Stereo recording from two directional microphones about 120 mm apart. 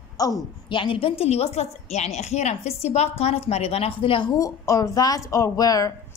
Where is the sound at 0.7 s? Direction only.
45° left (ahead or behind).